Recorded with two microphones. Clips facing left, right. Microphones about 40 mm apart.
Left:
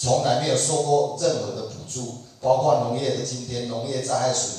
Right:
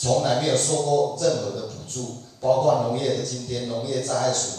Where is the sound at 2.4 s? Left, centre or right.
Right.